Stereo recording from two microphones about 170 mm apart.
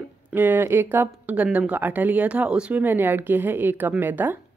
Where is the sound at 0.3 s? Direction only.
10° right (ahead or behind).